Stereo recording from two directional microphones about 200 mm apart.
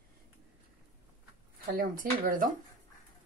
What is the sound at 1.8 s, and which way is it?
Speech, 45° right (ahead or behind).